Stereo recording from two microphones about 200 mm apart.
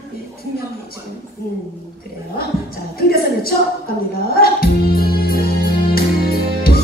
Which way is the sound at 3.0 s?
50° left (ahead or behind).